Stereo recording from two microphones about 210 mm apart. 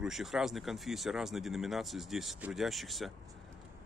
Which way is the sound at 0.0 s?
Centre (ahead or behind).